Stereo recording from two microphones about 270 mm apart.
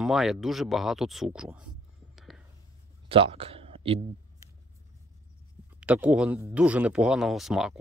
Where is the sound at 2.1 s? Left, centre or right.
Centre.